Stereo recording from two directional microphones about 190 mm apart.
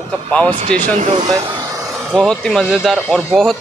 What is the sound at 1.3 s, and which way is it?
Speech, 20° right (ahead or behind).